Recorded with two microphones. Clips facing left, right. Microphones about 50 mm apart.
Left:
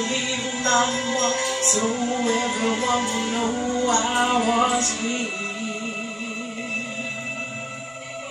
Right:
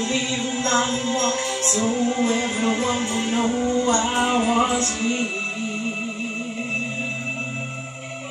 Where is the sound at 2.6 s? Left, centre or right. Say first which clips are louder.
Even; right.